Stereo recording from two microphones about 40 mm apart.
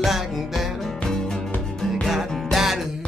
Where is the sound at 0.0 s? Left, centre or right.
Centre.